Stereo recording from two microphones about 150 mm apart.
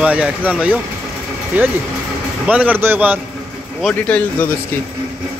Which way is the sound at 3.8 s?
10° left (ahead or behind).